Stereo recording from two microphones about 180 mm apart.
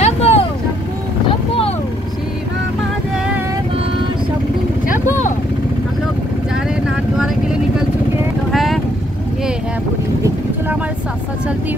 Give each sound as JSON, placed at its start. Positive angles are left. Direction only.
{"t": 0.0, "sound": "vehicle", "side_deg": 35}
{"t": 8.5, "sound": "vehicle", "side_deg": 0}